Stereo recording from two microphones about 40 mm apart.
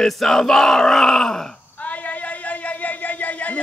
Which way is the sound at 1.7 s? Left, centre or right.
Left.